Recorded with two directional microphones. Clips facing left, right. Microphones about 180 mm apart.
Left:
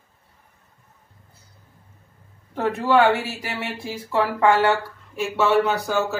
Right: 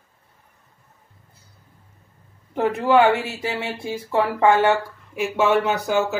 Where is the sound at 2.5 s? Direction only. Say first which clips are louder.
Right 2 dB; 20° right (ahead or behind).